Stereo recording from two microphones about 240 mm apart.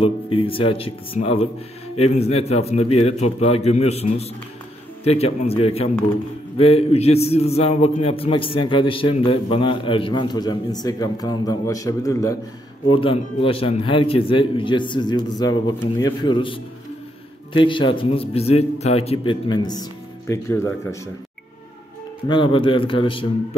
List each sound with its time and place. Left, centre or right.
0.0 s a man's voice: left
22.3 s a man's voice: left